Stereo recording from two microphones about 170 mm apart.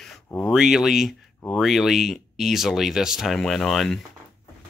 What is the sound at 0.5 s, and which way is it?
Speech, 5° right (ahead or behind).